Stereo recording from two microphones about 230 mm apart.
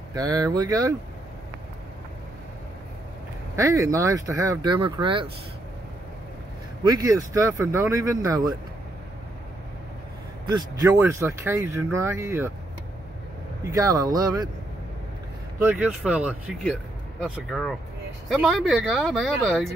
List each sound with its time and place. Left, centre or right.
0.1 s speech: centre
3.5 s speech: centre
6.8 s speech: centre
10.4 s speech: centre
13.7 s speech: centre
15.6 s speech: centre